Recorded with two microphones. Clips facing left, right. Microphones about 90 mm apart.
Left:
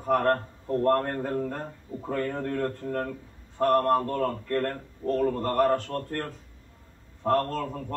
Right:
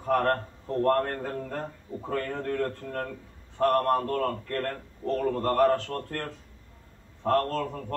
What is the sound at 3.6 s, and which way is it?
Speech, 15° left (ahead or behind).